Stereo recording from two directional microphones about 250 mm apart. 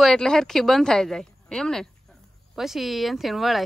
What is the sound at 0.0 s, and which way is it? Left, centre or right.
Speech, centre.